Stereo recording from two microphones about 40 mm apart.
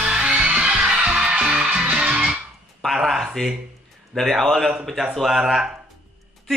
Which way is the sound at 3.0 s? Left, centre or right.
Centre.